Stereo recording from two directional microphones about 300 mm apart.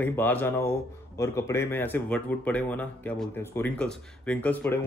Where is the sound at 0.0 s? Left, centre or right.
Centre.